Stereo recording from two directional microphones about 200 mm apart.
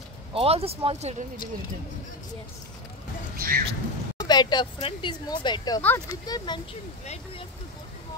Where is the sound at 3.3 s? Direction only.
45° right (ahead or behind).